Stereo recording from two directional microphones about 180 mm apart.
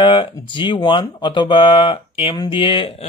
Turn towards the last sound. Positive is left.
turn(degrees=30)  # may be behind; listen again after turning